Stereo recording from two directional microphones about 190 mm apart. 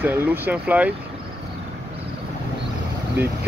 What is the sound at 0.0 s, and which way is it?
Speech, 10° right (ahead or behind).